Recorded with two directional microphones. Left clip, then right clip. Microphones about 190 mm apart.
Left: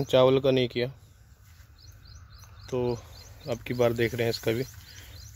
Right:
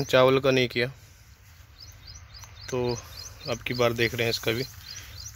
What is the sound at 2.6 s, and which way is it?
Speech, 15° left (ahead or behind).